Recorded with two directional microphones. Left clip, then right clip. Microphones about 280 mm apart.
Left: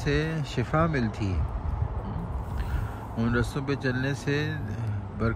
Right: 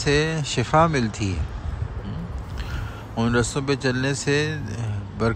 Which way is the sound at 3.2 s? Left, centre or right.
Centre.